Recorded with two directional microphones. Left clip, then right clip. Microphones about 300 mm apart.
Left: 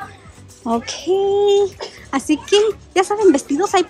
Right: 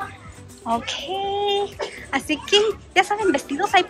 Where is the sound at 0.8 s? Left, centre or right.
Centre.